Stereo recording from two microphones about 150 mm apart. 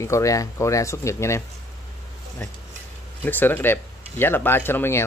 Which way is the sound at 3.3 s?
15° left (ahead or behind).